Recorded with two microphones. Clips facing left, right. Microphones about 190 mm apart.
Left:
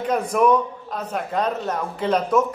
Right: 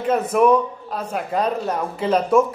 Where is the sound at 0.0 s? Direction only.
5° right (ahead or behind).